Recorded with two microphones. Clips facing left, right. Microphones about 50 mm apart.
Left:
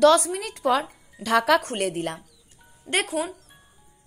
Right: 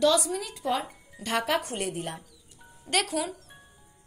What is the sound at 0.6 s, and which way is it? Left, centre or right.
Speech, left.